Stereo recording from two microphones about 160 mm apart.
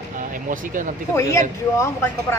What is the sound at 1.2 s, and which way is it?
Speech, 20° left (ahead or behind).